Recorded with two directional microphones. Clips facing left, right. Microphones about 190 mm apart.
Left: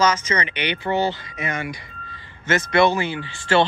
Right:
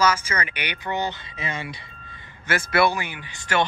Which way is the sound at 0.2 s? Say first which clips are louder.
Left 5 dB; 10° right (ahead or behind).